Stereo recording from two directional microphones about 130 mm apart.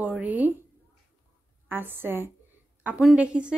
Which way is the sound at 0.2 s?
10° right (ahead or behind).